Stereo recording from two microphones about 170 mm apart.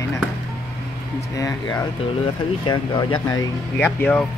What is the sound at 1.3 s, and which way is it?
Speech, 20° left (ahead or behind).